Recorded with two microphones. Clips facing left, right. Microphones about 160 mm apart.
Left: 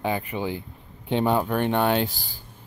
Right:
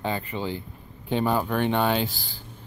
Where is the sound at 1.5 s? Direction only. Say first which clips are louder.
Left 1 dB; 10° left (ahead or behind).